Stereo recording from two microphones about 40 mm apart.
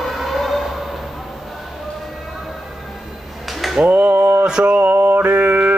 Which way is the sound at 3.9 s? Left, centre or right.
Right.